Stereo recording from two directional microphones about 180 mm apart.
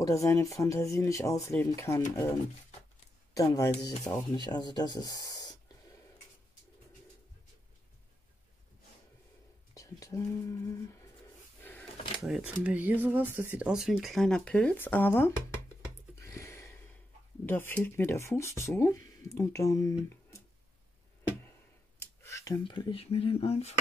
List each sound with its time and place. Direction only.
0.0 s speech: 15° left (ahead or behind)
3.3 s speech: 20° left (ahead or behind)
9.8 s speech: 20° left (ahead or behind)
12.2 s speech: 5° right (ahead or behind); by 15.3 s 10° left (ahead or behind)
16.2 s a sound: 15° left (ahead or behind)
17.5 s speech: 10° left (ahead or behind)
22.0 s speech: 15° left (ahead or behind); by 23.7 s 35° left (ahead or behind)